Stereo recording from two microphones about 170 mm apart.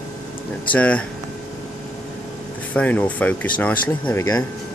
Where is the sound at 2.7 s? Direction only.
10° left (ahead or behind).